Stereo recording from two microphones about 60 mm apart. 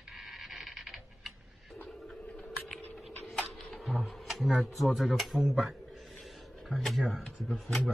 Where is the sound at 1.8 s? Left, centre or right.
Centre.